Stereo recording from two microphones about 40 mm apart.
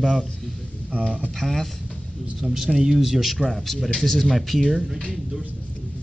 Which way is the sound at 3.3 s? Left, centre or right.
Centre.